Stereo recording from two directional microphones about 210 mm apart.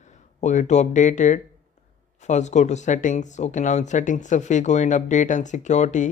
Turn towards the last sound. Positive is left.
turn(degrees=35)  # may be behind; listen again after turning